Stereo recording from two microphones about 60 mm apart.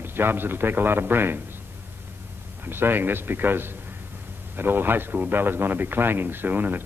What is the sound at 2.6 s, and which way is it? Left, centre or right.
Speech, right.